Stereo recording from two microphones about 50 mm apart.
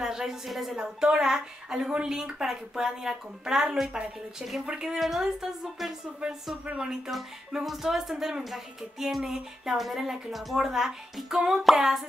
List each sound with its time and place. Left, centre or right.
0.0 s a woman's voice: centre
4.9 s a woman's voice: centre
6.8 s a woman's voice: centre